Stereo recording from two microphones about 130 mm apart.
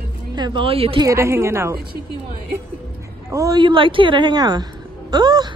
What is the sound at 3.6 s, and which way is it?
A woman's voice, 40° right (ahead or behind).